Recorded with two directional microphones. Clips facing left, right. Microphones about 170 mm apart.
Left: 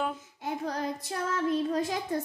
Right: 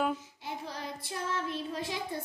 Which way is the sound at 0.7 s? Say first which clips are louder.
Left 7 dB; 45° left (ahead or behind).